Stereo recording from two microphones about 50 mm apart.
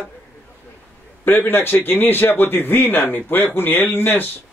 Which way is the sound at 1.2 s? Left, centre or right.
Left.